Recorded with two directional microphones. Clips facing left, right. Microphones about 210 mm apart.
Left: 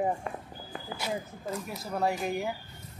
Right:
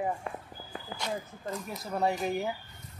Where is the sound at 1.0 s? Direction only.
5° left (ahead or behind).